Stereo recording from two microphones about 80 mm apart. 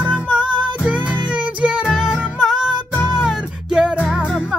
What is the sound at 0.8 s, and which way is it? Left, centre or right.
Music, centre.